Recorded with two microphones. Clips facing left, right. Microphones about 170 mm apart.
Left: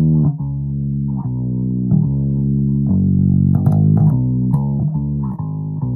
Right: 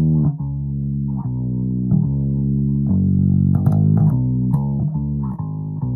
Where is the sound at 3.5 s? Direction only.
35° left (ahead or behind).